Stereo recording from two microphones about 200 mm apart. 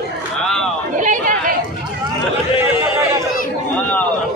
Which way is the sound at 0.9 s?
40° right (ahead or behind).